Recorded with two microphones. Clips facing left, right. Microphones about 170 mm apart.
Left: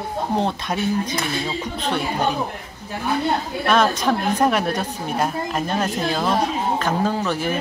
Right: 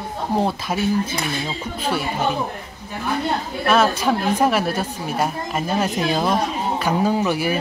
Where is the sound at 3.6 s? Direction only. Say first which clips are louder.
Right 1 dB; 5° right (ahead or behind).